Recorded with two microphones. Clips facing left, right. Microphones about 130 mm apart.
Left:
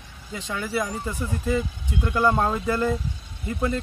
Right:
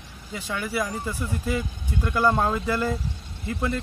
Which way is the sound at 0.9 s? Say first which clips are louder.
Left 1 dB; 15° left (ahead or behind).